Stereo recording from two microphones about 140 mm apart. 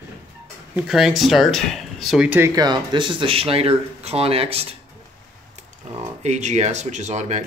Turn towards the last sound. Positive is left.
turn(degrees=-55)  # may be behind; listen again after turning